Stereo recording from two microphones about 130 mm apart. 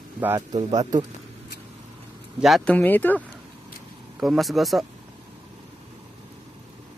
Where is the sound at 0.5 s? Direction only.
35° right (ahead or behind).